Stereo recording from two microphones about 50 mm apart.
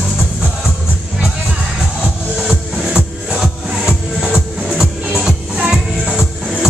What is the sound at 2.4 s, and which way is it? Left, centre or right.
Music, centre.